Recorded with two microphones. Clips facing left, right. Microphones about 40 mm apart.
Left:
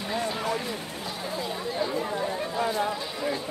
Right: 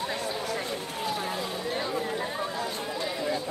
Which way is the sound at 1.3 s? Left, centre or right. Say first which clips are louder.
Even; right.